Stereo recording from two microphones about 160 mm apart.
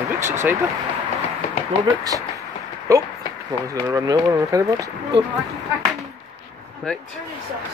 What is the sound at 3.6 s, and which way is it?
Speech, 20° right (ahead or behind).